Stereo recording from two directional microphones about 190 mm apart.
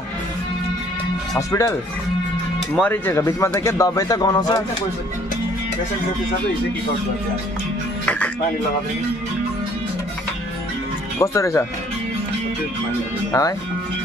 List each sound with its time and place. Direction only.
1.5 s speech: 15° left (ahead or behind)
8.0 s music: 5° left (ahead or behind)
11.1 s speech: 15° left (ahead or behind)
13.3 s speech: 20° left (ahead or behind)